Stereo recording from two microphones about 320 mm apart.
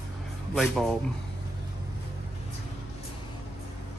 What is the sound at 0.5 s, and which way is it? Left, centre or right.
Speech, centre.